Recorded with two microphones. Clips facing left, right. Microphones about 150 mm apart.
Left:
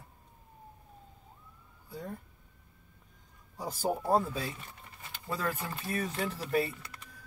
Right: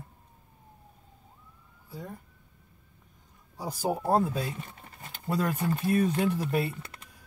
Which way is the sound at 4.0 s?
40° right (ahead or behind).